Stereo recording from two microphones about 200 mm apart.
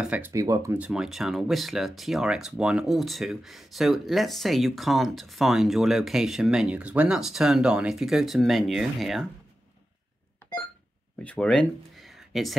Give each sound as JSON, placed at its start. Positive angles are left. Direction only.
{"t": 0.0, "sound": "speech", "side_deg": -5}
{"t": 0.3, "sound": "speech", "side_deg": -15}
{"t": 11.2, "sound": "speech", "side_deg": 5}